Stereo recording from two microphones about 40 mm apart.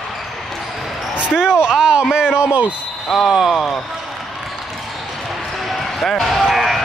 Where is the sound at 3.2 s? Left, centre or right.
Centre.